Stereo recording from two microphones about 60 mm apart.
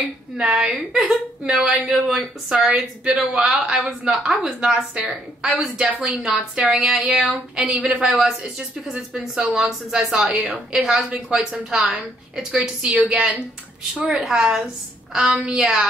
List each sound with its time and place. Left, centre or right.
0.4 s a woman's voice: centre
7.7 s a woman's voice: right
8.1 s a woman's voice: centre
11.3 s a woman's voice: centre
13.9 s a woman's voice: centre